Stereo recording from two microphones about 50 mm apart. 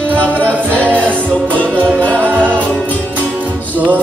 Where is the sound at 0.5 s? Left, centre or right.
Right.